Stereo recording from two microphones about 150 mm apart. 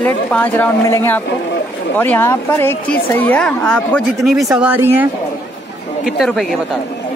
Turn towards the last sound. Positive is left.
turn(degrees=0)  # may be behind; listen again after turning